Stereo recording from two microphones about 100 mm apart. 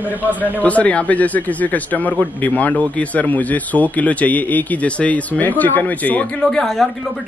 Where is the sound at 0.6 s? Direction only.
15° left (ahead or behind).